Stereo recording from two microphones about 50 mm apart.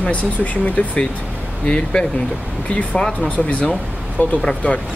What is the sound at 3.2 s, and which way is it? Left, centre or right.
Speech, left.